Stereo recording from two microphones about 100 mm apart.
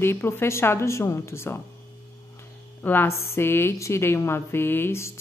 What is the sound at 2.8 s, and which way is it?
A woman's voice, 20° left (ahead or behind).